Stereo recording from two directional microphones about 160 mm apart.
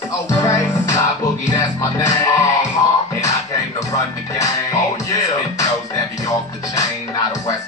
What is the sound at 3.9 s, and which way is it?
Music, 20° left (ahead or behind).